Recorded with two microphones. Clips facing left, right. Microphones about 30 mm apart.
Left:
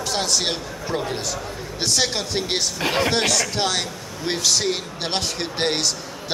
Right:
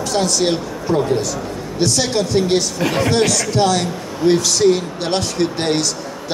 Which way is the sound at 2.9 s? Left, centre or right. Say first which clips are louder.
Right 2 dB; left.